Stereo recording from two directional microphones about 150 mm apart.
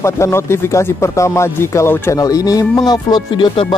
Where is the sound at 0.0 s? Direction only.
20° left (ahead or behind).